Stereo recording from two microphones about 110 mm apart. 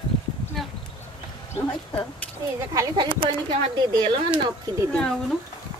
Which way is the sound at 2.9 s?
50° right (ahead or behind).